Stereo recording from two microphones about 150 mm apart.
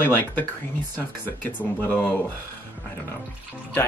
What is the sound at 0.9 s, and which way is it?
Speech, 15° left (ahead or behind).